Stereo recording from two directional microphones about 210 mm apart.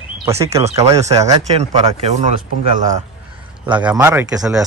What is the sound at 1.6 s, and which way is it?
Speech, 30° right (ahead or behind).